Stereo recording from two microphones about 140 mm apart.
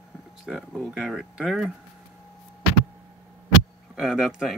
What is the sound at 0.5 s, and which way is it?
Speech, 5° left (ahead or behind).